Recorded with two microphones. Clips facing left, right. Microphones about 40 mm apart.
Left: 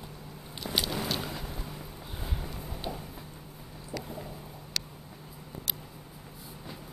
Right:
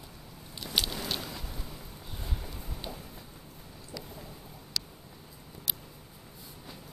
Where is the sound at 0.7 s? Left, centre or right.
Centre.